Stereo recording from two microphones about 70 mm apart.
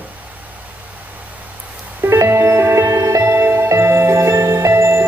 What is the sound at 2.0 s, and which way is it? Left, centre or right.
Music, right.